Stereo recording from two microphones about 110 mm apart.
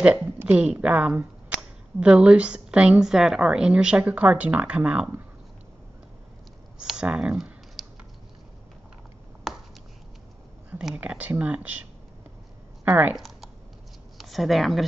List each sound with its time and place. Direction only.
0.0 s a woman's voice: 15° right (ahead or behind)
6.8 s computer keyboard: 10° right (ahead or behind)
11.0 s a woman's voice: 15° right (ahead or behind)
12.8 s speech: 15° right (ahead or behind)
13.1 s a sound: centre (ahead or behind)
14.1 s speech: centre (ahead or behind)